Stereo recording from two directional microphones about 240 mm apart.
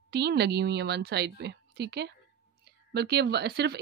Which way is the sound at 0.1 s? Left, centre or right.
Right.